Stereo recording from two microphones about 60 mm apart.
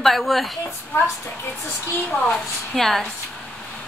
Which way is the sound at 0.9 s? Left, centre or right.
Left.